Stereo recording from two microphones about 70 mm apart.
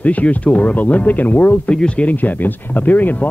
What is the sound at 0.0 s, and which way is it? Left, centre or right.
Speech, left.